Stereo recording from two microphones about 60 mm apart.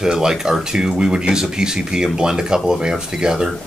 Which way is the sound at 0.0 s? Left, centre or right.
Centre.